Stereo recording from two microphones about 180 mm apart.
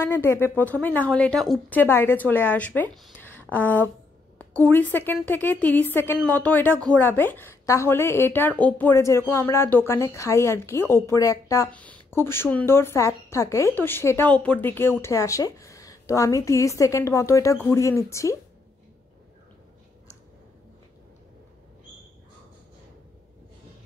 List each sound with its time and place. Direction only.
0.0 s a woman's voice: 15° left (ahead or behind)